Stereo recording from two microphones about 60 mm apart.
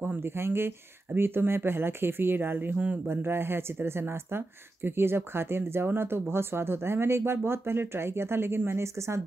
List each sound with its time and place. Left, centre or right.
0.0 s speech: right
2.7 s speech: right
3.1 s speech: right